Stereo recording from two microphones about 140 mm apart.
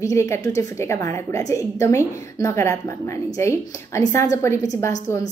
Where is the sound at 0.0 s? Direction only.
20° left (ahead or behind).